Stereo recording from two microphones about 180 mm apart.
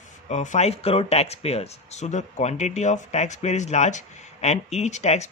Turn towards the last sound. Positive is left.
turn(degrees=40)  # may be behind; listen again after turning